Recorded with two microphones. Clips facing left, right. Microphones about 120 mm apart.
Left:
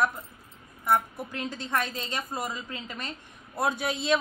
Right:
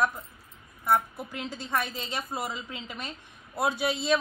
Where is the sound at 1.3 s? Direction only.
10° right (ahead or behind).